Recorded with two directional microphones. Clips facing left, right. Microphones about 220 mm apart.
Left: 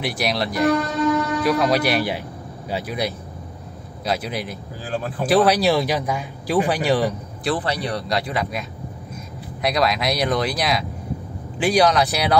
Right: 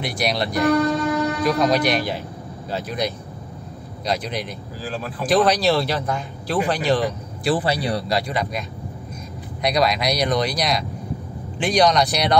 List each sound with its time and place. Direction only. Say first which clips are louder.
0.0 s speech: even; centre (ahead or behind)
1.0 s train: left 1 dB; 30° right (ahead or behind)
1.4 s speech: right 1 dB; centre (ahead or behind)
4.8 s speech: left 2 dB; 45° left (ahead or behind)
5.4 s speech: left 1 dB; 10° left (ahead or behind)
7.4 s a man's voice: right 2 dB; 5° right (ahead or behind)
8.1 s speech: right 1 dB; centre (ahead or behind)